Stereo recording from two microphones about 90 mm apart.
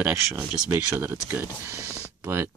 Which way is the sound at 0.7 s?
25° right (ahead or behind).